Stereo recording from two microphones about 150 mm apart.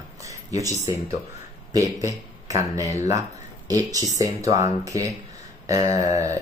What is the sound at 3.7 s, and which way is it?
Speech, 25° right (ahead or behind).